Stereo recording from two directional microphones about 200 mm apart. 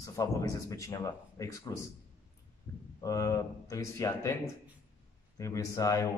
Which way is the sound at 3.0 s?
15° left (ahead or behind).